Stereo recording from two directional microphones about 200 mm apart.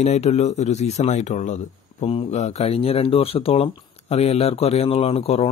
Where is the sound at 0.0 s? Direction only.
35° left (ahead or behind).